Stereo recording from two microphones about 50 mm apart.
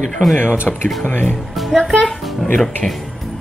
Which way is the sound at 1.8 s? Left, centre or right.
Centre.